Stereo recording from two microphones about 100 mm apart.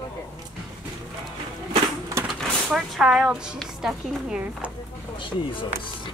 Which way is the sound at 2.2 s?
5° right (ahead or behind).